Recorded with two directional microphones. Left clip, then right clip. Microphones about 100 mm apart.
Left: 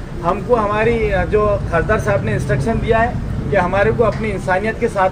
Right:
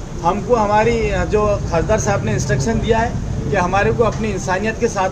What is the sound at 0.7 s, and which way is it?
Speech, 30° right (ahead or behind).